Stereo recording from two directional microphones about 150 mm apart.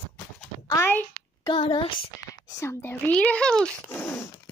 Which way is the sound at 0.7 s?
15° left (ahead or behind).